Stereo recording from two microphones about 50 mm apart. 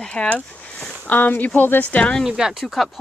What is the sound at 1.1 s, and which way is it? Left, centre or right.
Speech, left.